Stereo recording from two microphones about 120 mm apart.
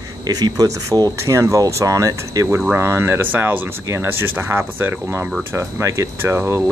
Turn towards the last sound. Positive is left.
turn(degrees=-20)  # may be behind; listen again after turning